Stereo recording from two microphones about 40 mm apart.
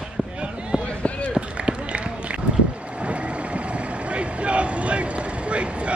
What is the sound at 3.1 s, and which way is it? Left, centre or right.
Vehicle, right.